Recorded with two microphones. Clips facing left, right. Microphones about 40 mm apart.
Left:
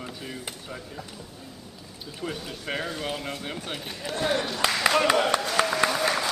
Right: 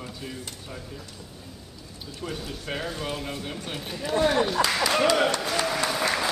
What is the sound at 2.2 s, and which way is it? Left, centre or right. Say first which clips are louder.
Speech: left 1 dB; centre.